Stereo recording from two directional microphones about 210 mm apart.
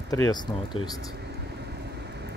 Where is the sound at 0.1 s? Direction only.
20° left (ahead or behind).